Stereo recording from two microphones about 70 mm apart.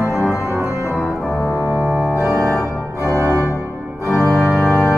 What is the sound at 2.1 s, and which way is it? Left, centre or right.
Organ, right.